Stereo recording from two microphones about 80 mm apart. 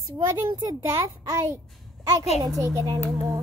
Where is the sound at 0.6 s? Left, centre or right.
Right.